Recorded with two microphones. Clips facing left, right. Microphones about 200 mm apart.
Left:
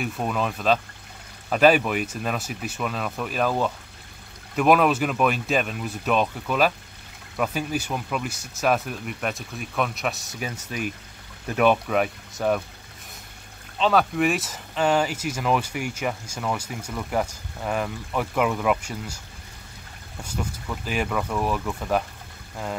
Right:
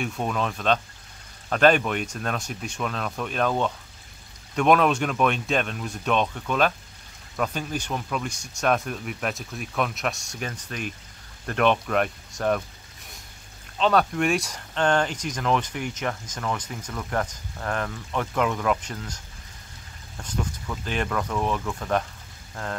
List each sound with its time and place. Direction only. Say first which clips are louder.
0.0 s speech: left 1 dB; centre (ahead or behind)
13.7 s speech: left 1 dB; centre (ahead or behind)
20.2 s speech: even; 5° left (ahead or behind)